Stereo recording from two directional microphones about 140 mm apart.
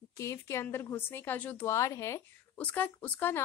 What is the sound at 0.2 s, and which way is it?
Speech, 20° left (ahead or behind).